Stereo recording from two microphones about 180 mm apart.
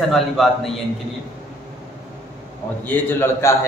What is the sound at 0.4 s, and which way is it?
Speech, centre (ahead or behind).